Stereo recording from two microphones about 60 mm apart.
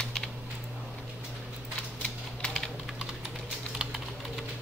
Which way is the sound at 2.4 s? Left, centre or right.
Centre.